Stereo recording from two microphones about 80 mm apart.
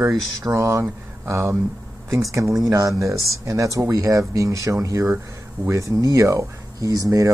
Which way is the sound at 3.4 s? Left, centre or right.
Right.